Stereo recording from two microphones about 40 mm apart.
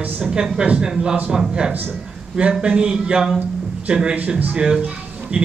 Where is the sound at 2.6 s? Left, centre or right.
Right.